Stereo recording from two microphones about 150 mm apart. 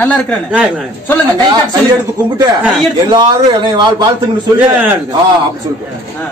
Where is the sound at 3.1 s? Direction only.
30° right (ahead or behind).